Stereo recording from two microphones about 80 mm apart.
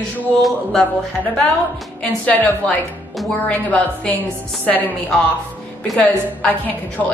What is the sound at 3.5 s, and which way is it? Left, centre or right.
A woman's voice, centre.